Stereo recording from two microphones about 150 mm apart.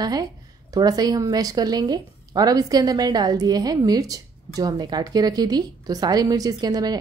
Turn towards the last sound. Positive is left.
turn(degrees=-25)  # may be behind; listen again after turning